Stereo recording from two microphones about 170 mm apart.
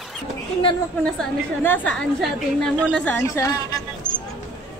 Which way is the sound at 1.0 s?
5° left (ahead or behind).